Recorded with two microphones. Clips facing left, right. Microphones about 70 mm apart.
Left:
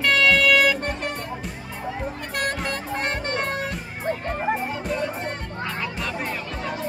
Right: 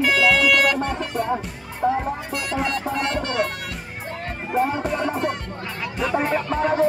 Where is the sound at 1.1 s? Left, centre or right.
Right.